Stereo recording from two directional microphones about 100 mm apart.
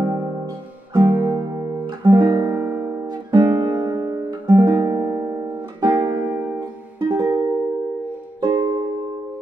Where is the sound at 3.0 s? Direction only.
50° right (ahead or behind).